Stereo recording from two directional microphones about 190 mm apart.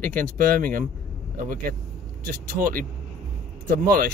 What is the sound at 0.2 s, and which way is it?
Speech, 50° right (ahead or behind).